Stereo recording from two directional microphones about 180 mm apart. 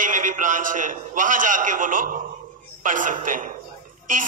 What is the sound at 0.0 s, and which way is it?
A man's voice, 45° right (ahead or behind).